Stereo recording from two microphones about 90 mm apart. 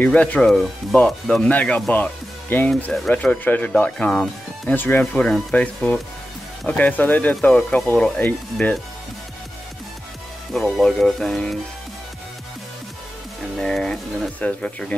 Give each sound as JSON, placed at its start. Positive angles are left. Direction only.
{"t": 0.0, "sound": "speech", "side_deg": 15}
{"t": 2.9, "sound": "speech", "side_deg": 10}
{"t": 5.2, "sound": "speech", "side_deg": 10}
{"t": 10.5, "sound": "speech", "side_deg": 5}
{"t": 13.6, "sound": "speech", "side_deg": 5}